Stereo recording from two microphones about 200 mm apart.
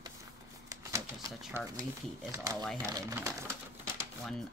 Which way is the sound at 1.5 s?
10° right (ahead or behind).